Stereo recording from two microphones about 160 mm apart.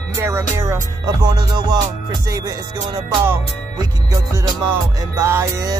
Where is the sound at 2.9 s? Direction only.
20° right (ahead or behind).